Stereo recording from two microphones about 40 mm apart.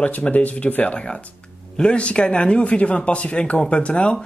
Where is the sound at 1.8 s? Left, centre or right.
Left.